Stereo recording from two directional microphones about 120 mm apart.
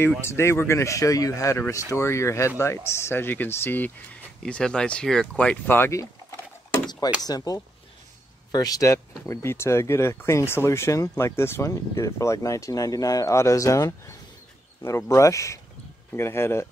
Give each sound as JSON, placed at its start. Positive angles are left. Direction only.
{"t": 0.2, "sound": "speech", "side_deg": 20}
{"t": 4.4, "sound": "speech", "side_deg": 5}
{"t": 7.2, "sound": "speech", "side_deg": 30}